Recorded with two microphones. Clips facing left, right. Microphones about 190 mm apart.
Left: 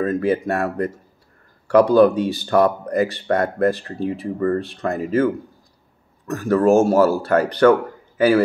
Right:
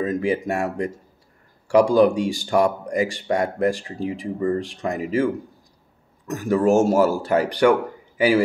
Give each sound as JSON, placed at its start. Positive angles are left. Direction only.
{"t": 0.0, "sound": "speech", "side_deg": -15}